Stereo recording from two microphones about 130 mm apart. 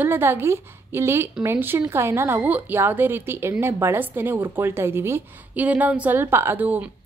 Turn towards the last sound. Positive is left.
turn(degrees=-15)  # may be behind; listen again after turning